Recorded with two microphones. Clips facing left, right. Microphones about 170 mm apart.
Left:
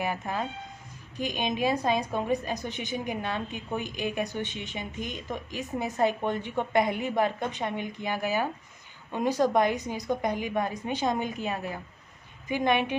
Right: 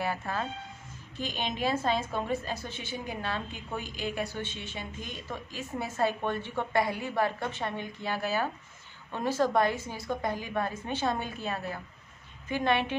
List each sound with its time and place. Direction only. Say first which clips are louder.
0.0 s a woman's voice: left 2 dB; 15° left (ahead or behind)